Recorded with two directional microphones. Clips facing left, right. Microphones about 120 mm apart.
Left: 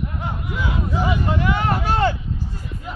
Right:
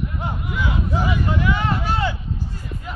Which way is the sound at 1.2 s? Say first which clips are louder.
Left 1 dB; 45° left (ahead or behind).